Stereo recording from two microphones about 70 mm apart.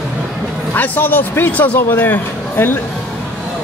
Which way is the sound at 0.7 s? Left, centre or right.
Left.